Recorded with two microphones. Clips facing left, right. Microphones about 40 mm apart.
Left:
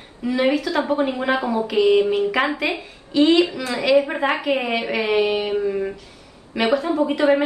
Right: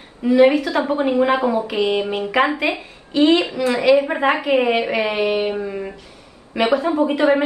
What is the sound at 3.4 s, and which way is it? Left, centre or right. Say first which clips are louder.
Speech: left 2 dB; right.